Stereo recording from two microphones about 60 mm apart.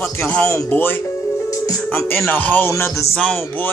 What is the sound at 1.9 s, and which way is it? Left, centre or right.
Music, left.